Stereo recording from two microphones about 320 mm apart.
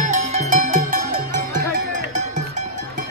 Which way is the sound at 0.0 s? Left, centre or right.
Right.